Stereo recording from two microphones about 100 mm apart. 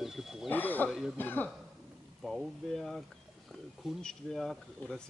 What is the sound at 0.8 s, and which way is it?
Speech, centre (ahead or behind).